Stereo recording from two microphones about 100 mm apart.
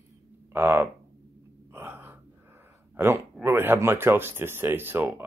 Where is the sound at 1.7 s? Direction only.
20° right (ahead or behind).